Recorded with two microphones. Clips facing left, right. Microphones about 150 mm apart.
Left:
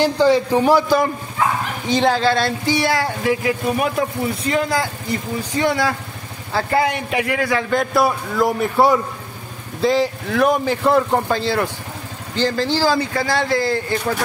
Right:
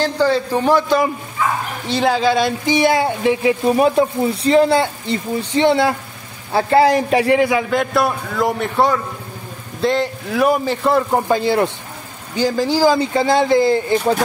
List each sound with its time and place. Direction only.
0.0 s a man's voice: 15° left (ahead or behind); by 7.6 s 20° right (ahead or behind)
7.7 s a man's voice: centre (ahead or behind)
11.2 s speech: 15° right (ahead or behind)